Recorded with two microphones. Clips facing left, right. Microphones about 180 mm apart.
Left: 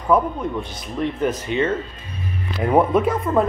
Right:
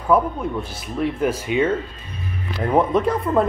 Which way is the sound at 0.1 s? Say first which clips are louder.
Even; 5° right (ahead or behind).